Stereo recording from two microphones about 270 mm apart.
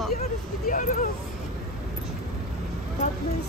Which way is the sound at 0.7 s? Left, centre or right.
Left.